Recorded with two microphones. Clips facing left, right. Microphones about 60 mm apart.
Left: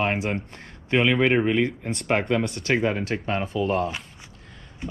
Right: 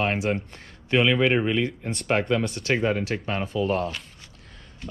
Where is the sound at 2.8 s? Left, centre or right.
Left.